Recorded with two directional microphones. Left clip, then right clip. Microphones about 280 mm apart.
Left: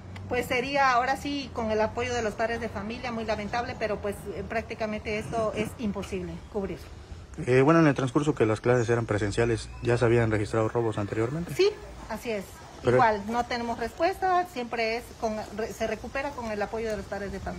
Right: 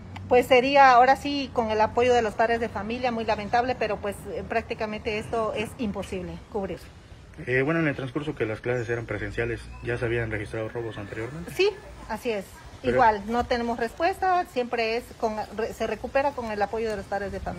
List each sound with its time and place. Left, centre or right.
0.3 s a woman's voice: centre
7.4 s speech: centre
8.4 s speech: left
11.5 s a woman's voice: centre